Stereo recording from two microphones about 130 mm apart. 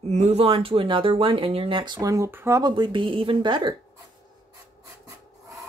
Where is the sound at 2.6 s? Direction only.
35° right (ahead or behind).